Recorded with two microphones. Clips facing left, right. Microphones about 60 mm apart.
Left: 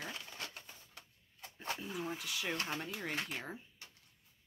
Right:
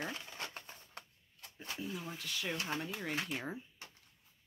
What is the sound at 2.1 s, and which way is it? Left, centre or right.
Speech, centre.